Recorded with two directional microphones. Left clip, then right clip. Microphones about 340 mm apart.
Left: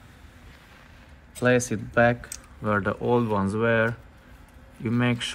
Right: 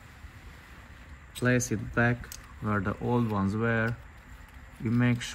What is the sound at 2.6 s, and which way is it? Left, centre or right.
Speech, left.